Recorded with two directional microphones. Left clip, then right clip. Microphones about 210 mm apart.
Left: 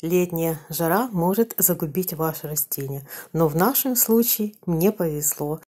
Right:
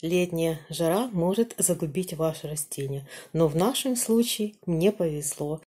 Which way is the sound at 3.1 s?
15° left (ahead or behind).